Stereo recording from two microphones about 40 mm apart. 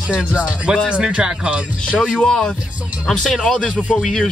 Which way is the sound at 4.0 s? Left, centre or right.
Centre.